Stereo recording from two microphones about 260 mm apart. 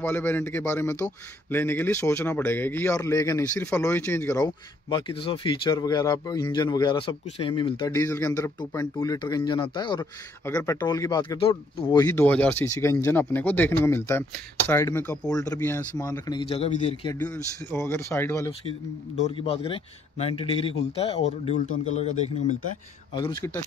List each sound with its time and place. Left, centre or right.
0.0 s a man's voice: centre
17.2 s a man's voice: centre
19.1 s a man's voice: left